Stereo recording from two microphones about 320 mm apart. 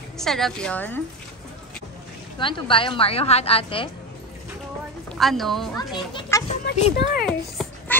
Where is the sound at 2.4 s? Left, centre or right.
Centre.